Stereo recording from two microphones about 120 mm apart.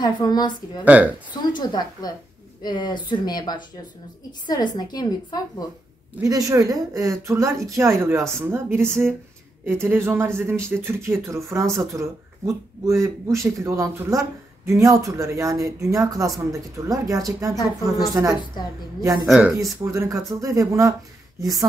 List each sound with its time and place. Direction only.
0.0 s speech: 35° left (ahead or behind)
0.8 s speech: 10° right (ahead or behind)
1.4 s speech: 35° left (ahead or behind)
6.2 s speech: 30° right (ahead or behind)
19.2 s speech: 5° right (ahead or behind)
19.6 s speech: 25° right (ahead or behind)